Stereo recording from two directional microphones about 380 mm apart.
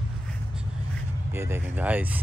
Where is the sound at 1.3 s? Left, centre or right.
Centre.